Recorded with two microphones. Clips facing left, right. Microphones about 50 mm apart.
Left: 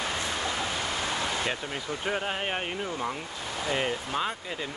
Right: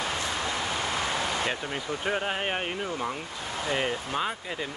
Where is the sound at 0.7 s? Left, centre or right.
Right.